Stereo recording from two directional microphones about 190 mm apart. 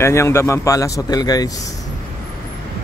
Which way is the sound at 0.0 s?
15° left (ahead or behind).